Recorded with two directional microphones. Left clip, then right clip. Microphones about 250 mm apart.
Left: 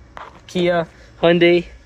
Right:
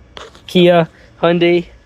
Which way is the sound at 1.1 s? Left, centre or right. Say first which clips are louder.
Right 1 dB; centre.